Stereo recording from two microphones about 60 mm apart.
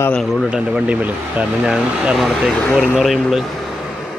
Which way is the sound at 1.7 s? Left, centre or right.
Centre.